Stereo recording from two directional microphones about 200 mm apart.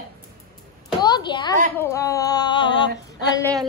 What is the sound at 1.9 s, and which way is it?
Female singing, 15° left (ahead or behind).